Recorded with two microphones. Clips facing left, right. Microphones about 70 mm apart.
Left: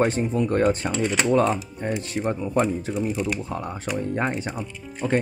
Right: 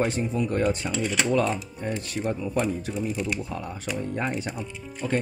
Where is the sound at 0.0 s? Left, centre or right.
Left.